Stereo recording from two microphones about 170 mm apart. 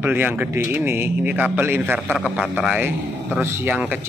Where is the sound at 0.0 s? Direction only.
10° right (ahead or behind).